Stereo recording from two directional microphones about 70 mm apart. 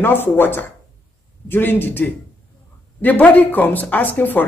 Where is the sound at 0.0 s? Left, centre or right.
Left.